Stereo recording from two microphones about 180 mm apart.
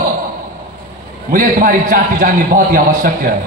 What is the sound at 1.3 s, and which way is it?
A man's voice, 50° right (ahead or behind).